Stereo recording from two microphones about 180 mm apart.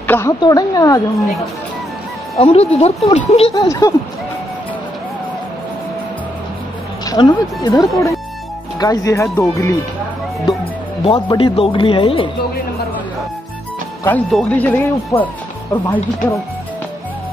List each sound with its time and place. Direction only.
0.0 s speech: 15° left (ahead or behind)
2.3 s speech: 35° left (ahead or behind)
3.5 s speech: 20° left (ahead or behind)
7.1 s speech: 20° left (ahead or behind)
11.1 s speech: 30° left (ahead or behind)
14.0 s speech: 10° left (ahead or behind)